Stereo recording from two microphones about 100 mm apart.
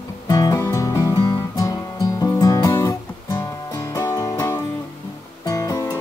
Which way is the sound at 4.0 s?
35° left (ahead or behind).